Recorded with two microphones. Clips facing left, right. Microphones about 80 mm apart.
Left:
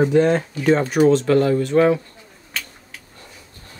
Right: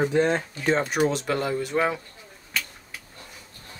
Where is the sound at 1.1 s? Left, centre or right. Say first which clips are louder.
Left 10 dB; centre.